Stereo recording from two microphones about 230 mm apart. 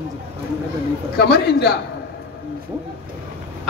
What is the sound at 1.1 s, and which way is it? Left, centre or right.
Speech, left.